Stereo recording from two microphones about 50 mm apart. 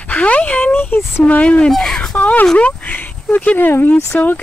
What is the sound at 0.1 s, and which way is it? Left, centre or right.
Speech, left.